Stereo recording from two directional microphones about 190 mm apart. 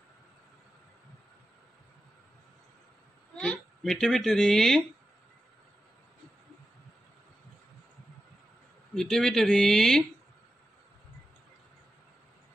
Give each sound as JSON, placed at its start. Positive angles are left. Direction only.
{"t": 3.3, "sound": "a child's voice", "side_deg": 5}
{"t": 8.9, "sound": "speech", "side_deg": 0}